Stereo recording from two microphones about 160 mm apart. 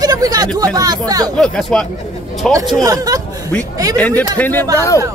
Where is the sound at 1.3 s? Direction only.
5° left (ahead or behind).